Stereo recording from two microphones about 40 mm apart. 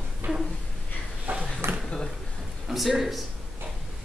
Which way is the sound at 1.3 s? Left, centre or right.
Right.